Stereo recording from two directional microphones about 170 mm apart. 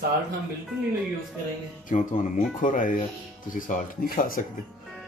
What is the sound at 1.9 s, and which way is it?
Speech, 50° left (ahead or behind).